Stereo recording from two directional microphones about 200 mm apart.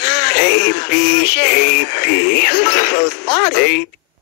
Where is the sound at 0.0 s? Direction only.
55° left (ahead or behind).